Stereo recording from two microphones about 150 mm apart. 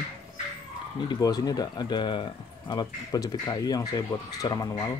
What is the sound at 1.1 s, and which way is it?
Speech, 25° left (ahead or behind).